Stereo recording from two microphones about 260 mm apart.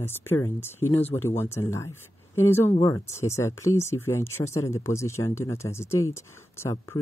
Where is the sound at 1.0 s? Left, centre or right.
Left.